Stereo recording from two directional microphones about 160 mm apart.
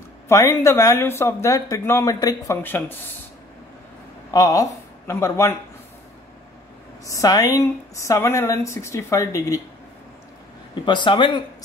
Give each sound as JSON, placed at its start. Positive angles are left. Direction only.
{"t": 0.3, "sound": "speech", "side_deg": 20}
{"t": 4.3, "sound": "a woman's voice", "side_deg": 20}
{"t": 7.1, "sound": "speech", "side_deg": 20}
{"t": 10.7, "sound": "speech", "side_deg": 30}